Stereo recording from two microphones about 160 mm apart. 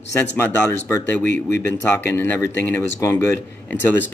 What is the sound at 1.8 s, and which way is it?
Speech, 15° left (ahead or behind).